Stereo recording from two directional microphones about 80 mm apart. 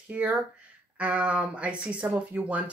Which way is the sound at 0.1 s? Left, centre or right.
Centre.